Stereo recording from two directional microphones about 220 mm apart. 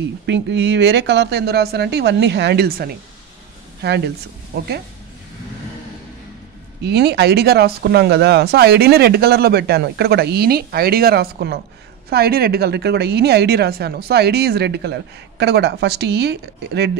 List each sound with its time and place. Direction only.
0.3 s a woman's voice: 50° right (ahead or behind)
6.8 s a woman's voice: 50° right (ahead or behind)